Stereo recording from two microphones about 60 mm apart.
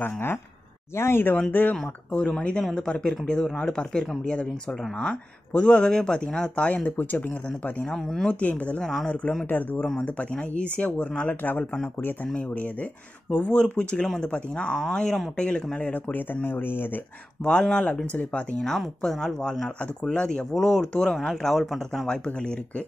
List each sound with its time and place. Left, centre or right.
0.0 s speech: left
1.5 s speech: left
2.1 s speech: centre
7.9 s speech: centre
8.3 s speech: left
8.8 s speech: centre
9.5 s speech: left
9.8 s speech: centre
15.9 s speech: left
17.4 s speech: centre
18.6 s speech: centre
19.8 s speech: centre